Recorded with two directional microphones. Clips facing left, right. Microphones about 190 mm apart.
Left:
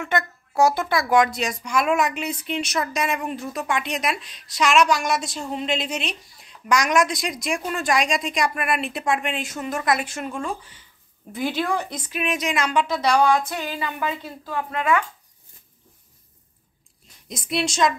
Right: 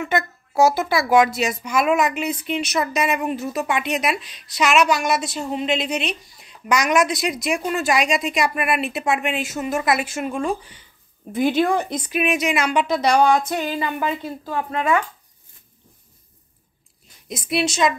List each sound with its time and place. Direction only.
0.0 s a woman's voice: 5° right (ahead or behind); by 15.0 s 30° right (ahead or behind)
17.3 s speech: 5° right (ahead or behind)